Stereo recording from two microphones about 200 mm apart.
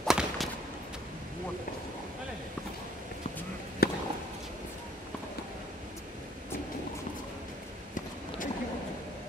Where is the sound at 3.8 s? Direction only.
50° left (ahead or behind).